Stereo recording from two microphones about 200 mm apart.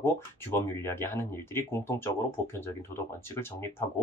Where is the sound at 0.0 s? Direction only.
10° left (ahead or behind).